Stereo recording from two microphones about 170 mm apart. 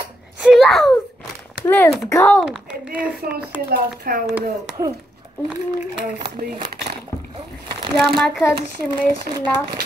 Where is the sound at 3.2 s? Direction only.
65° right (ahead or behind).